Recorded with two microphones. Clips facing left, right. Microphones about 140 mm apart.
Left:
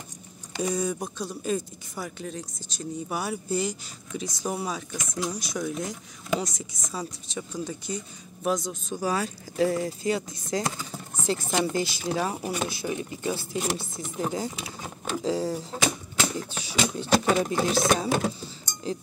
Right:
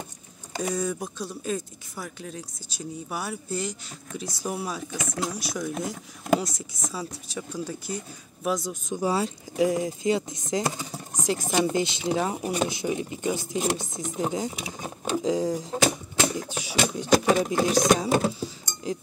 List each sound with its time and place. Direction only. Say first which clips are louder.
0.6 s speech: even; centre (ahead or behind)
5.7 s speech: right 1 dB; 60° right (ahead or behind)
6.4 s speech: right 1 dB; 5° right (ahead or behind)
8.8 s a sound: right 4 dB; 20° right (ahead or behind)
10.9 s speech: right 1 dB; 15° right (ahead or behind)